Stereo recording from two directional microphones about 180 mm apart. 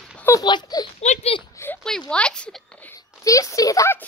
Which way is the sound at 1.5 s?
15° left (ahead or behind).